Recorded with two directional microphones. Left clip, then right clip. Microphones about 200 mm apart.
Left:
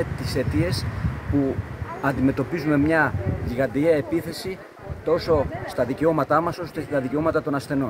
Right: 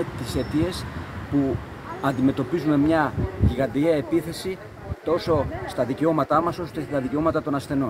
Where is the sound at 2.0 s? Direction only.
20° left (ahead or behind).